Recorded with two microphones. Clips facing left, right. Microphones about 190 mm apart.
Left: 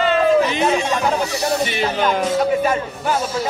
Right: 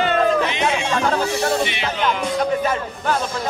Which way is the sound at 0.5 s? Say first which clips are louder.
Left 3 dB; 35° left (ahead or behind).